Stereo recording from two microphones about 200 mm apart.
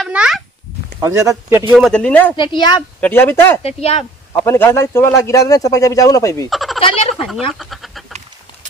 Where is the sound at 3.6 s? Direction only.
30° left (ahead or behind).